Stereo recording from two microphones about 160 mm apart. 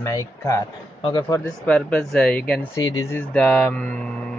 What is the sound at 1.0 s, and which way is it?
Speech, 35° left (ahead or behind).